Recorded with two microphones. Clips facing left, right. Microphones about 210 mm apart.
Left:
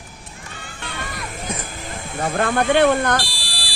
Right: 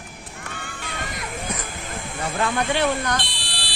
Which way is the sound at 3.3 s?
10° left (ahead or behind).